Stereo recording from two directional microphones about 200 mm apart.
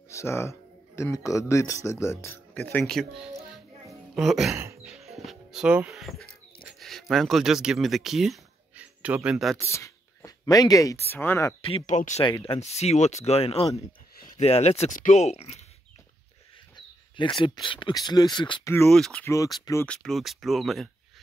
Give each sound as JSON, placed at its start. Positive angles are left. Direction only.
{"t": 0.1, "sound": "speech", "side_deg": 15}
{"t": 4.8, "sound": "music", "side_deg": 0}
{"t": 6.7, "sound": "speech", "side_deg": 0}
{"t": 9.6, "sound": "speech", "side_deg": 15}
{"t": 11.6, "sound": "speech", "side_deg": 30}
{"t": 12.3, "sound": "speech", "side_deg": 25}
{"t": 16.7, "sound": "speech", "side_deg": 25}